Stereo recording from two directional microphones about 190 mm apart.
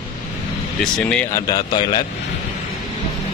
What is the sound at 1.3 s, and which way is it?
Speech, 20° left (ahead or behind).